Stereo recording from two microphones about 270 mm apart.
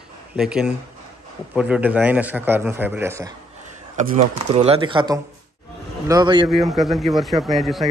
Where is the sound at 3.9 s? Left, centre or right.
Right.